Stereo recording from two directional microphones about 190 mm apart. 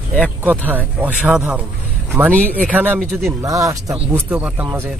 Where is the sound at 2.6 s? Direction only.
10° right (ahead or behind).